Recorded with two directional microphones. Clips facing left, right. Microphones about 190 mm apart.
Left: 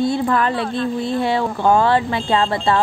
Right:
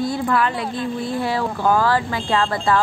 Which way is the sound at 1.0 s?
25° left (ahead or behind).